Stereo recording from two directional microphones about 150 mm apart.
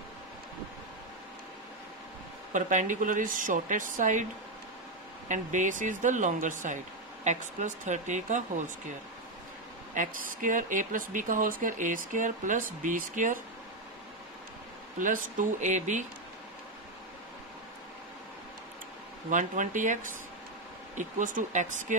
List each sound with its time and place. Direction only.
2.5 s speech: 55° right (ahead or behind)
5.3 s speech: 55° right (ahead or behind)
9.9 s speech: 60° right (ahead or behind)
15.0 s speech: 60° right (ahead or behind)
19.3 s speech: 60° right (ahead or behind)